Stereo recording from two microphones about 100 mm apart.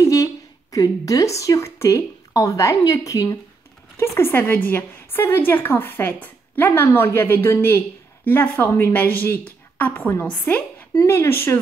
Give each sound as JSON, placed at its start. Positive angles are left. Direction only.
{"t": 0.0, "sound": "a woman's voice", "side_deg": 35}